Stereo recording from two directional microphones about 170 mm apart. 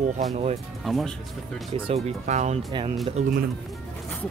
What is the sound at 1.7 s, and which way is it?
Speech, 35° right (ahead or behind).